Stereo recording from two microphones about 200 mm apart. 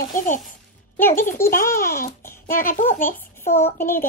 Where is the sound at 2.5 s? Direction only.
45° left (ahead or behind).